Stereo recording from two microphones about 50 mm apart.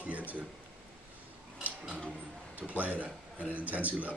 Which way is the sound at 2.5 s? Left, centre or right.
Right.